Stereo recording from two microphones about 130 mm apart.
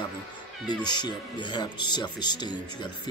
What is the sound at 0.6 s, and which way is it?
Speech, 35° left (ahead or behind).